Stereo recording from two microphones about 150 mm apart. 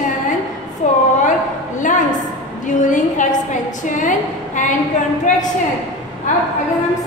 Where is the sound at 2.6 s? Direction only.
60° left (ahead or behind).